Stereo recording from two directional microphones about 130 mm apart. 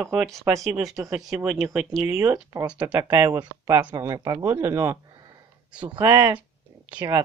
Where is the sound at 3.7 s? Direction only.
15° right (ahead or behind).